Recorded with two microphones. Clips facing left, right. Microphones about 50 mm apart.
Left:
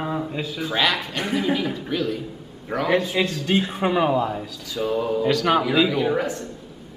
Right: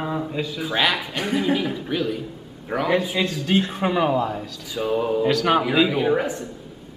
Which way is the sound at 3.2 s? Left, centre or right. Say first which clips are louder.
Even; centre.